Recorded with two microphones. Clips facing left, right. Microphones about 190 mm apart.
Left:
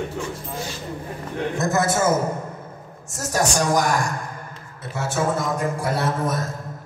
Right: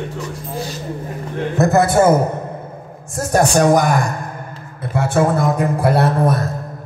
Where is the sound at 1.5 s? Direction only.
60° right (ahead or behind).